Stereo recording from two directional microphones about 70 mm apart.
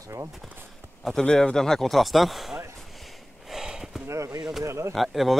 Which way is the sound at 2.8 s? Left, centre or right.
Centre.